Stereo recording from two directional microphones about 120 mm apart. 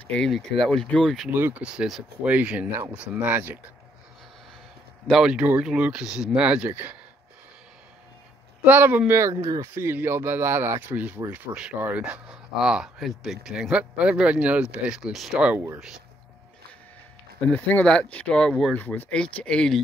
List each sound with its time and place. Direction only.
0.0 s speech: 10° left (ahead or behind)
1.3 s speech: 15° right (ahead or behind)
5.0 s speech: 5° right (ahead or behind)
8.6 s speech: 15° right (ahead or behind)
17.5 s speech: 10° left (ahead or behind)